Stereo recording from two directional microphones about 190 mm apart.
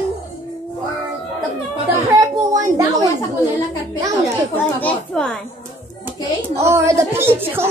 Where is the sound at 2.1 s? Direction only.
20° right (ahead or behind).